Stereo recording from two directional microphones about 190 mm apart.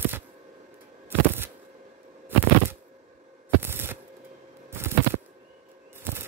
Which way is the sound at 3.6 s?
10° right (ahead or behind).